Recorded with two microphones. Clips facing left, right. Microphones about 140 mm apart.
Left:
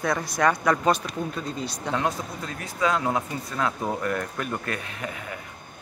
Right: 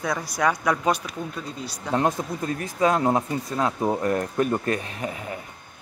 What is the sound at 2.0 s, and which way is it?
Speech, 45° right (ahead or behind).